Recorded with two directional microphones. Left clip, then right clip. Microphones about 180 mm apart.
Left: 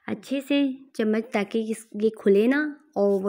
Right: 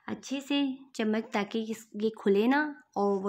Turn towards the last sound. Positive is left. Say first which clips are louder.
# left 6 dB
turn(degrees=15)  # may be behind; listen again after turning